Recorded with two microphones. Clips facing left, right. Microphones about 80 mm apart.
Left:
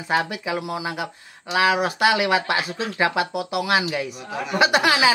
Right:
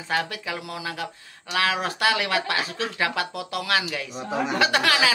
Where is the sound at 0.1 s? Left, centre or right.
Centre.